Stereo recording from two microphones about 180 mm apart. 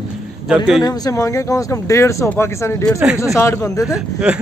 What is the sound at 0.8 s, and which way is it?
Speech, 20° left (ahead or behind).